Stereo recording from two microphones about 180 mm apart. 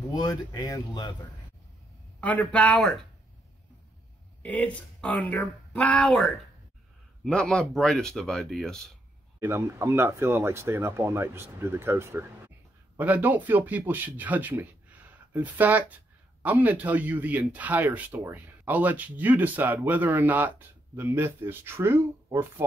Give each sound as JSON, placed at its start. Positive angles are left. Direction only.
{"t": 0.0, "sound": "speech", "side_deg": 20}
{"t": 2.1, "sound": "speech", "side_deg": 10}
{"t": 4.4, "sound": "speech", "side_deg": 10}
{"t": 9.4, "sound": "speech", "side_deg": -15}